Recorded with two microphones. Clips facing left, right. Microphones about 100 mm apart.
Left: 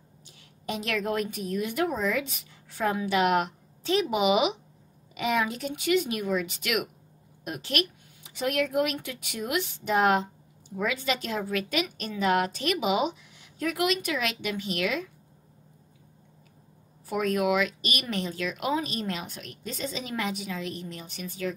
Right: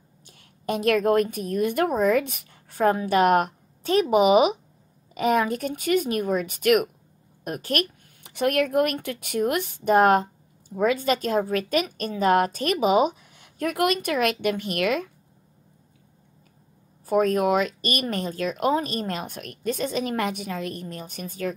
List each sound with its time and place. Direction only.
0.3 s a woman's voice: 50° right (ahead or behind)
17.0 s speech: 40° right (ahead or behind)